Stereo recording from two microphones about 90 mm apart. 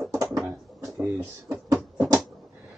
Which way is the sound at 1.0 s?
25° right (ahead or behind).